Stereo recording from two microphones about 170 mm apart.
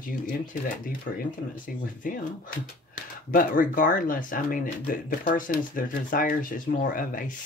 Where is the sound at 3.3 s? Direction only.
55° left (ahead or behind).